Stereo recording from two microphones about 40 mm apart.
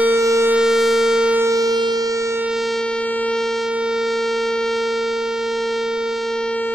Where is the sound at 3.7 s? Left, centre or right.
Right.